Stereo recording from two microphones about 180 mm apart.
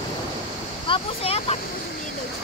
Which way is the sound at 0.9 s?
35° left (ahead or behind).